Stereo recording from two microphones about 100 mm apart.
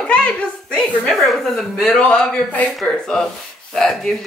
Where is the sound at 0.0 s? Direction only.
10° left (ahead or behind).